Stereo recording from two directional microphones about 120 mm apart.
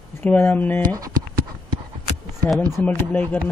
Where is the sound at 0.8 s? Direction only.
30° right (ahead or behind).